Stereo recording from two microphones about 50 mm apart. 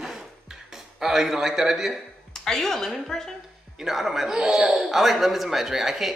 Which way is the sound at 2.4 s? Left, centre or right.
Centre.